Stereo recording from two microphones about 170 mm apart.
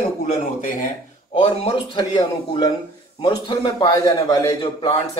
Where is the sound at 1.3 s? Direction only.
40° left (ahead or behind).